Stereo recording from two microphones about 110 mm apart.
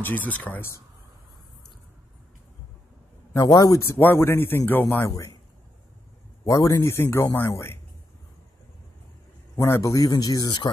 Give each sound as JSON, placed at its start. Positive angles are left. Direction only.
{"t": 0.0, "sound": "speech", "side_deg": 15}
{"t": 3.3, "sound": "speech", "side_deg": 35}
{"t": 5.1, "sound": "speech", "side_deg": 30}
{"t": 6.4, "sound": "speech", "side_deg": 30}
{"t": 9.6, "sound": "a man's voice", "side_deg": 30}